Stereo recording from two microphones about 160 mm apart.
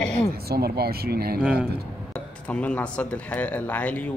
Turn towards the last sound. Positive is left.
turn(degrees=10)  # may be behind; listen again after turning